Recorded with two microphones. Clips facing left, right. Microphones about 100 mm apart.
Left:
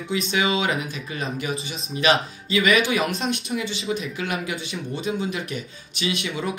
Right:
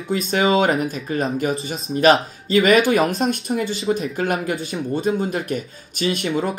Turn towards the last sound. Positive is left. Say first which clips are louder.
# right 5 dB
turn(degrees=-40)  # may be behind; listen again after turning